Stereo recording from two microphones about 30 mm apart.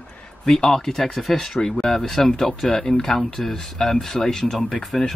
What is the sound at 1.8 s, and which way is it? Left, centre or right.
Speech, centre.